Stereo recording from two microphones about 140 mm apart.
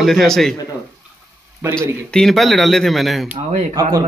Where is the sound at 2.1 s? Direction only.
5° left (ahead or behind).